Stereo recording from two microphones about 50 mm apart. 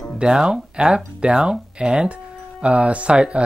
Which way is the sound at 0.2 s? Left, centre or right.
Centre.